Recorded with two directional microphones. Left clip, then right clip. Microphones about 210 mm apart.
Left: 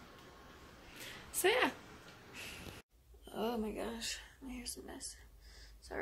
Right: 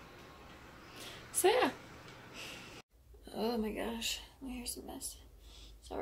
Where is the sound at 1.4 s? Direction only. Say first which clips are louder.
Right 2 dB; 20° right (ahead or behind).